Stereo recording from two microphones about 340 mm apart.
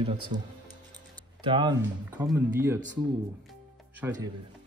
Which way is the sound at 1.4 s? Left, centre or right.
Centre.